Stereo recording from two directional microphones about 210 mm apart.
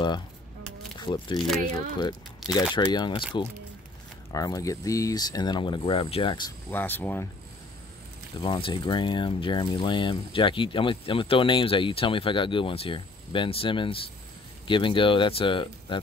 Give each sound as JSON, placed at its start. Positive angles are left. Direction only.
{"t": 0.9, "sound": "speech", "side_deg": 20}
{"t": 4.3, "sound": "speech", "side_deg": 15}
{"t": 6.7, "sound": "speech", "side_deg": 10}
{"t": 8.4, "sound": "speech", "side_deg": 25}